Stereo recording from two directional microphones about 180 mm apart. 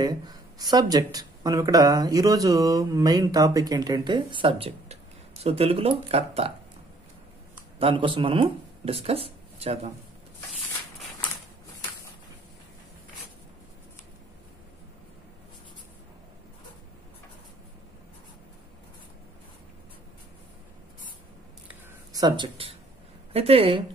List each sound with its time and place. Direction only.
0.0 s speech: 20° right (ahead or behind)
7.8 s speech: 30° right (ahead or behind)
22.1 s speech: 25° right (ahead or behind)